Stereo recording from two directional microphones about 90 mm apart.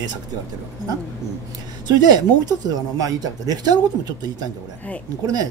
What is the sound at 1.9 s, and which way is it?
Speech, 50° right (ahead or behind).